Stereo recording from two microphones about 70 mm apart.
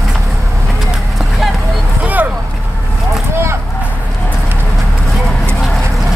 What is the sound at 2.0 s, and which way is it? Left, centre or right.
Vehicle, right.